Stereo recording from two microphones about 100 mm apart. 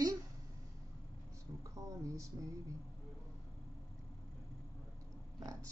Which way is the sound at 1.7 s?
30° right (ahead or behind).